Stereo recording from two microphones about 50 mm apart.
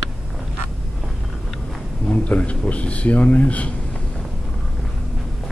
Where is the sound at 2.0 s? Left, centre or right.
Left.